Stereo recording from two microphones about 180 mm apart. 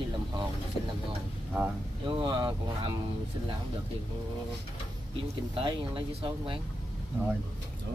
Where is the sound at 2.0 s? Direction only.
25° right (ahead or behind).